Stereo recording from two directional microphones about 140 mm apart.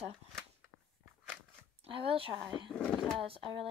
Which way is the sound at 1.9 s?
40° right (ahead or behind).